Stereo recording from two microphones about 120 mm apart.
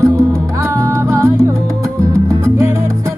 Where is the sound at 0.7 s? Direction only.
25° right (ahead or behind).